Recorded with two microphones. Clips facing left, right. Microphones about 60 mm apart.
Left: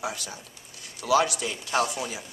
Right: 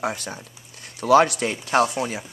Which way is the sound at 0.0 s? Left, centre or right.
Right.